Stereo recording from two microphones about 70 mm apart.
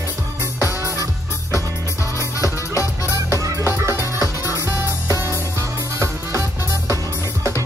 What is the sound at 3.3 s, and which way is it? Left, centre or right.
Music, right.